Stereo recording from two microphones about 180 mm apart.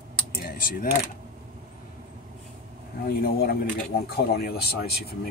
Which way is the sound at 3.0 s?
60° left (ahead or behind).